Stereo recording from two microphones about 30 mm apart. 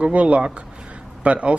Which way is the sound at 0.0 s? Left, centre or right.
Right.